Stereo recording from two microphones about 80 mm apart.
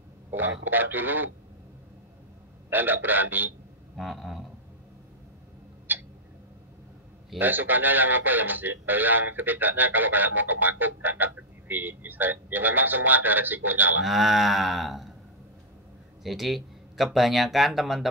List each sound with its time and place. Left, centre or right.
0.3 s speech: right
2.7 s speech: right
3.9 s a sound: centre
5.9 s tick-tock: right
7.3 s speech: right
14.0 s cattle: centre
16.2 s speech: centre